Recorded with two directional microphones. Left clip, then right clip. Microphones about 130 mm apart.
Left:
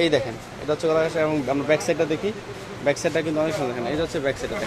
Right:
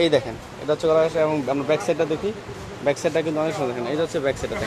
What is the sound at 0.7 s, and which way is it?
A man's voice, 5° right (ahead or behind).